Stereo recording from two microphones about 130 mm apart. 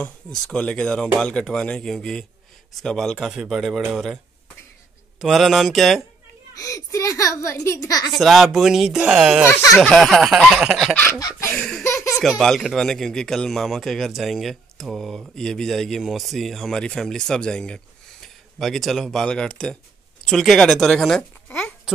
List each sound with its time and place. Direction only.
0.0 s speech: 5° left (ahead or behind)
5.2 s speech: centre (ahead or behind)
6.5 s a child's voice: 25° left (ahead or behind)
8.1 s speech: centre (ahead or behind)
9.5 s a child's voice: 25° left (ahead or behind)
9.8 s speech: centre (ahead or behind)
11.1 s chicken: 25° left (ahead or behind)
11.5 s laughter: 5° left (ahead or behind)
11.8 s baby laughter: 20° left (ahead or behind)
12.2 s speech: centre (ahead or behind)